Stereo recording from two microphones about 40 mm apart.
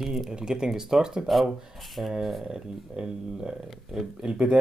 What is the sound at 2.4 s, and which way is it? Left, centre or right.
Speech, centre.